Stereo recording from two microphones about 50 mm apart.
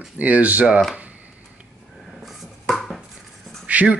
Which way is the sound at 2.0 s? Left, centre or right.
Centre.